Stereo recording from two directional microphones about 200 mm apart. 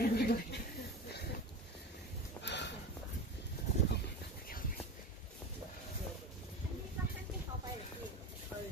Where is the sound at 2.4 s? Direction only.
60° left (ahead or behind).